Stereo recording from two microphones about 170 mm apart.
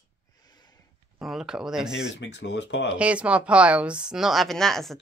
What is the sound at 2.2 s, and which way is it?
Speech, 90° left.